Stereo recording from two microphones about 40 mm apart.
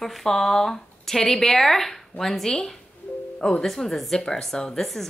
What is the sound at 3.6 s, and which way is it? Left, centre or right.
Speech, centre.